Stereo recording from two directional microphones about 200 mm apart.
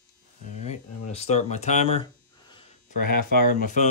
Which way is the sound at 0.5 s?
35° left (ahead or behind).